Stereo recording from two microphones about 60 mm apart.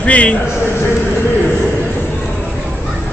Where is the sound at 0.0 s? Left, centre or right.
Left.